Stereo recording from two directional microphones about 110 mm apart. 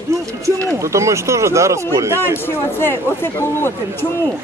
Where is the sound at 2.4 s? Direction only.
20° left (ahead or behind).